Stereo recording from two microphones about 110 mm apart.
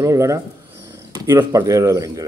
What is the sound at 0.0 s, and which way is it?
Speech, 30° right (ahead or behind).